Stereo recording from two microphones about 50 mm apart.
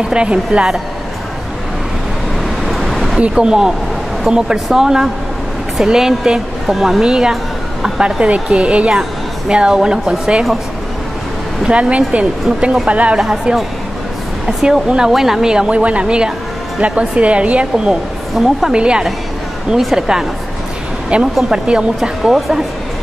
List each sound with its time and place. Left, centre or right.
0.1 s a woman's voice: centre
2.6 s vehicle: centre
3.2 s a woman's voice: centre
11.6 s a woman's voice: right
13.2 s a woman's voice: centre
18.4 s a woman's voice: centre
18.7 s speech: centre
21.1 s a woman's voice: right; by 22.6 s centre